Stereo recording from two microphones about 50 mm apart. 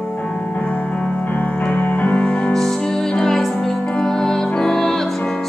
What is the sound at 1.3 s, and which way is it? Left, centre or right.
Music, left.